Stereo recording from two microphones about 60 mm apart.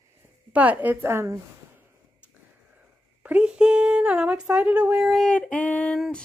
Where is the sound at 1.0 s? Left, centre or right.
Right.